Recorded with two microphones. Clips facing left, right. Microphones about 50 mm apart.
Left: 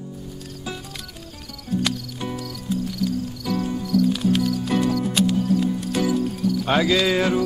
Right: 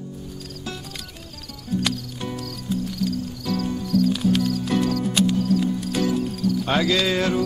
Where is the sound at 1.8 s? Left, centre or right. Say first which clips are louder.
Left 1 dB; centre.